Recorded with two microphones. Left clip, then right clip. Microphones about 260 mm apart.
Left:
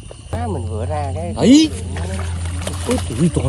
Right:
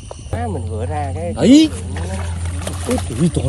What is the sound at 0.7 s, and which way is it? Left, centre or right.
Speech, left.